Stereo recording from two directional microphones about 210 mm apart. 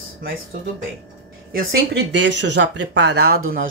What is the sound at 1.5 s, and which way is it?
Speech, 55° right (ahead or behind).